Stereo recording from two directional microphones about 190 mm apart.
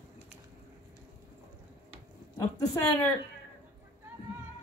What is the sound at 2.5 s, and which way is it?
Speech, 20° left (ahead or behind).